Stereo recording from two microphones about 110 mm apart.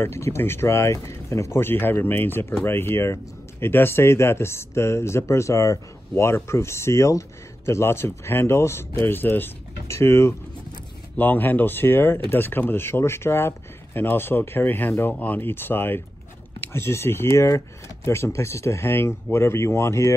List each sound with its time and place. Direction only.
0.0 s speech: 25° left (ahead or behind)